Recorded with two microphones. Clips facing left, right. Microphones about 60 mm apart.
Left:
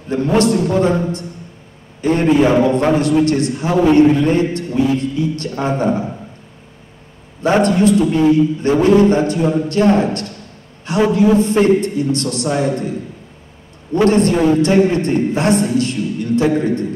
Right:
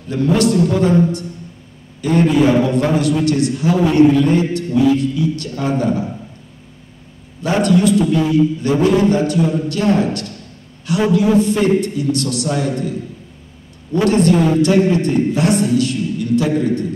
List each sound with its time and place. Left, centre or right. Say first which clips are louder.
0.1 s a man's voice: left 1 dB; left
7.4 s a man's voice: left 1 dB; left
13.9 s a man's voice: left 1 dB; left